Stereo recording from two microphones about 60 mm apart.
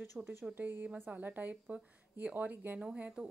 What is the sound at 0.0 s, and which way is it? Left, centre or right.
Speech, right.